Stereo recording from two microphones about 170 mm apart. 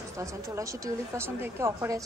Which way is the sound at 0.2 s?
20° right (ahead or behind).